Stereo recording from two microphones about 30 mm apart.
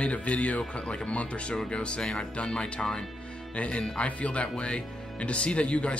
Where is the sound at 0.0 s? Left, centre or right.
Left.